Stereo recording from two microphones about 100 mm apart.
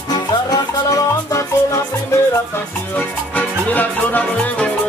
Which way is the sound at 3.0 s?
15° left (ahead or behind).